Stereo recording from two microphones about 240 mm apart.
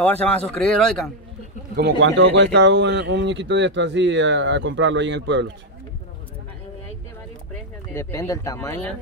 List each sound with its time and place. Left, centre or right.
0.0 s speech: centre
1.8 s a man's voice: right
7.9 s speech: centre